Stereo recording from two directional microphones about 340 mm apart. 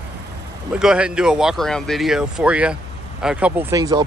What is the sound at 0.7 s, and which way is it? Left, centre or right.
Speech, centre.